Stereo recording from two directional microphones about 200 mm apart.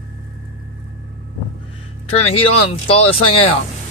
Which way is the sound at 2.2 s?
30° left (ahead or behind).